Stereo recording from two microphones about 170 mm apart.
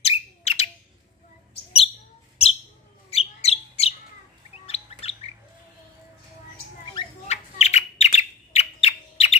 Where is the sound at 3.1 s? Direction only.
35° left (ahead or behind).